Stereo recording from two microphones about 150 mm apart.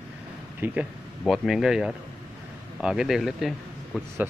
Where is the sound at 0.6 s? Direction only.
15° right (ahead or behind).